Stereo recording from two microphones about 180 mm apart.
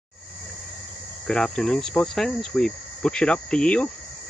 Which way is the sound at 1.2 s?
5° left (ahead or behind).